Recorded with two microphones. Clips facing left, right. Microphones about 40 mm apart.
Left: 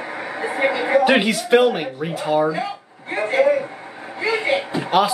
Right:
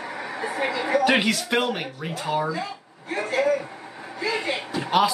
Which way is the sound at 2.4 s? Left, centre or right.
Left.